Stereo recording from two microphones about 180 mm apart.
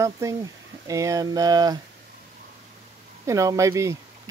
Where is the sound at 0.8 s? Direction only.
20° right (ahead or behind).